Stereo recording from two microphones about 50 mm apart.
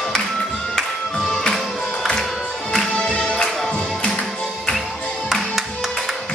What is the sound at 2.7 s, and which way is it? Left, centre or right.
Music, centre.